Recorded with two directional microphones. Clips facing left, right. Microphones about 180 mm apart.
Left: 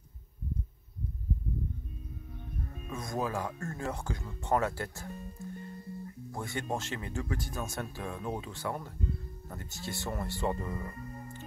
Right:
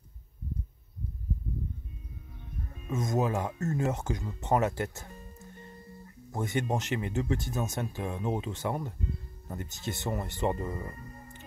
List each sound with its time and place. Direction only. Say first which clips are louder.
2.9 s speech: right 5 dB; 20° right (ahead or behind)
6.3 s speech: right 5 dB; 20° right (ahead or behind)